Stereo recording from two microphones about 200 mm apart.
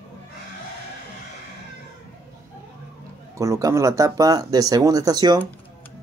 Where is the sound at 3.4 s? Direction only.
15° right (ahead or behind).